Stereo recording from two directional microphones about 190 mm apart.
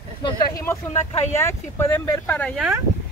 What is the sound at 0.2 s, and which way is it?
Speech, 15° left (ahead or behind).